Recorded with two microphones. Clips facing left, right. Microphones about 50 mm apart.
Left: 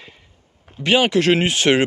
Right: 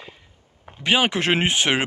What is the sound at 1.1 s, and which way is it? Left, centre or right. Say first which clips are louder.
Speech: left 4 dB; right.